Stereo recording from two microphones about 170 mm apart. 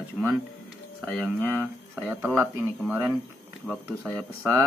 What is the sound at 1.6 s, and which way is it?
A man's voice, 10° right (ahead or behind).